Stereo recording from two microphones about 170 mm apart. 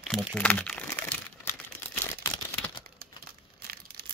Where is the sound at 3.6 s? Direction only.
65° right (ahead or behind).